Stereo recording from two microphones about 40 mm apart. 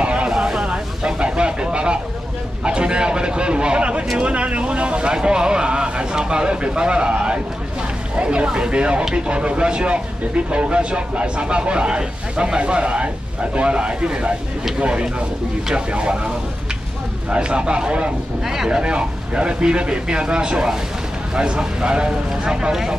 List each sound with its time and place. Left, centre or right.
0.0 s a sound: right
0.3 s a sound: centre
2.6 s speech: right
4.2 s vehicle: right
8.2 s speech: right
17.3 s speech: right
18.4 s speech: centre
18.8 s speech: right